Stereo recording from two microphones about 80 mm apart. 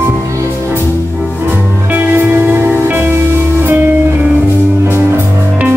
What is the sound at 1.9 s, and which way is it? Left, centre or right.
Music, right.